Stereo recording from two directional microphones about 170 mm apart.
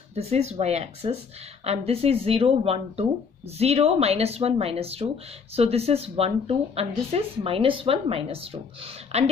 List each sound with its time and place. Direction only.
0.1 s speech: 40° right (ahead or behind)